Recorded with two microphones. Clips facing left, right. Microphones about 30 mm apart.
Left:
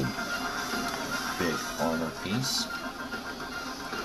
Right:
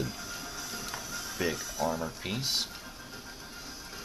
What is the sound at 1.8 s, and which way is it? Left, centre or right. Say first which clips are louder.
Speech: left 1 dB; left.